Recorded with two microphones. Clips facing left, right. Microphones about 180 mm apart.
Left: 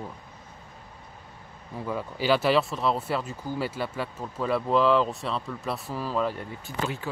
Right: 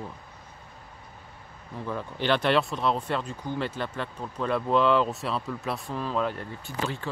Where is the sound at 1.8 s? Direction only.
10° left (ahead or behind).